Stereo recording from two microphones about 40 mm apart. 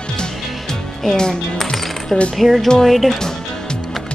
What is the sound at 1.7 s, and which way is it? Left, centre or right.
Coin, centre.